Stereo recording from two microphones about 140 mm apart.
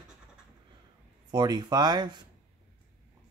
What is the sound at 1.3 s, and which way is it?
Mantra, 30° right (ahead or behind).